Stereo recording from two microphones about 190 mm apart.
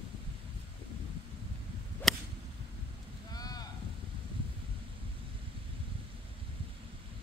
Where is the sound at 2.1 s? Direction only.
Centre (ahead or behind).